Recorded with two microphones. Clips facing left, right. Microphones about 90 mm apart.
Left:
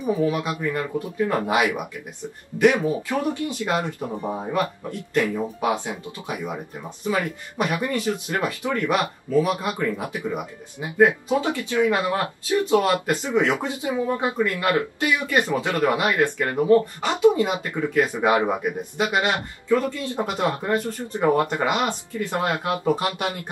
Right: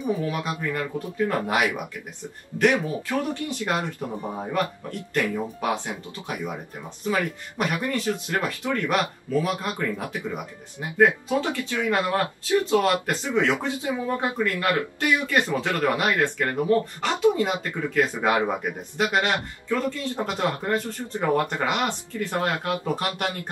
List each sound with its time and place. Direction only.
0.0 s speech: 20° left (ahead or behind)